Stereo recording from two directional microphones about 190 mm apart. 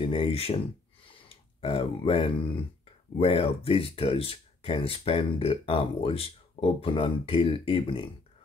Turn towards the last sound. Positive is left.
turn(degrees=30)  # may be behind; listen again after turning